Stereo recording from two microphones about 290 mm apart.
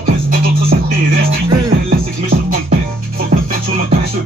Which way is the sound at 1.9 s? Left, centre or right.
Right.